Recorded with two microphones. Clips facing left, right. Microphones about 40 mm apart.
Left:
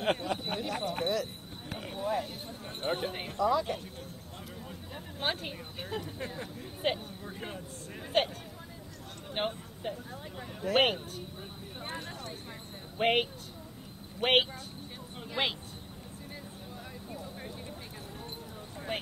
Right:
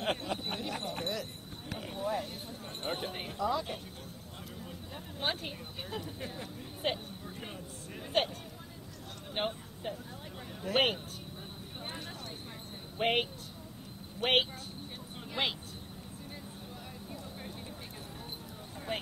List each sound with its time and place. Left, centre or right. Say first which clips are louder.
0.0 s a sound: left 3 dB; centre
2.8 s speech: left 4 dB; centre
5.2 s speech: left 2 dB; centre
12.9 s speech: left 3 dB; centre